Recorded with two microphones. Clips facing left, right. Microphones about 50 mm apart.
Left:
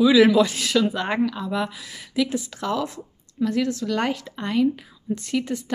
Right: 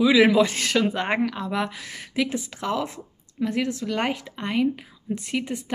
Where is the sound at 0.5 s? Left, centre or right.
Right.